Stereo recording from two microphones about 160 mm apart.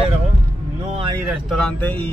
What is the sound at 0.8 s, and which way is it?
Speech, 40° right (ahead or behind).